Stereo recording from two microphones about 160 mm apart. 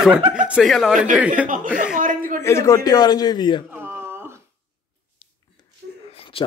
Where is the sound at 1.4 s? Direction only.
55° right (ahead or behind).